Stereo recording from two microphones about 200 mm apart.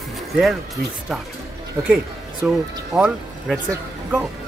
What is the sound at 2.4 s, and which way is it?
Speech, 5° right (ahead or behind).